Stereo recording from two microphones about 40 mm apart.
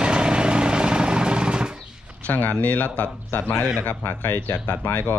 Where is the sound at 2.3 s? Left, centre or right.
Left.